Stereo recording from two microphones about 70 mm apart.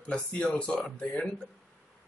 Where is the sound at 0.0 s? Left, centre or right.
Centre.